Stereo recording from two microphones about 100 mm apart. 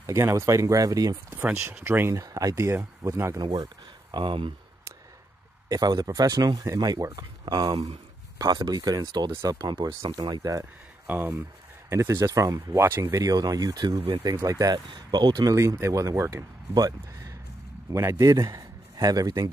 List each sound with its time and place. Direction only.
0.0 s speech: 30° right (ahead or behind)
1.3 s speech: 20° right (ahead or behind)
2.2 s speech: 35° right (ahead or behind)
3.4 s speech: 50° right (ahead or behind)
5.7 s speech: 40° right (ahead or behind)
9.8 s speech: 50° right (ahead or behind)
10.6 s speech: 20° right (ahead or behind)
13.1 s speech: 35° right (ahead or behind)
15.5 s a man's voice: 30° right (ahead or behind)